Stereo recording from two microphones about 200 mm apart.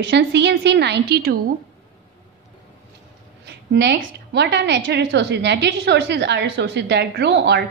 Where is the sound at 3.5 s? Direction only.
60° right (ahead or behind).